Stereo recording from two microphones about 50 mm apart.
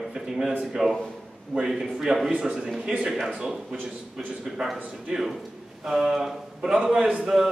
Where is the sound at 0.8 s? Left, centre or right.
Centre.